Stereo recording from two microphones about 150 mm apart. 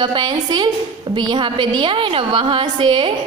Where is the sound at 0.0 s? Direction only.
30° right (ahead or behind).